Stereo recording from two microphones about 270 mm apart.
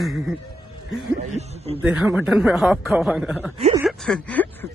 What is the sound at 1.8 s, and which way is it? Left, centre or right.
A man's voice, centre.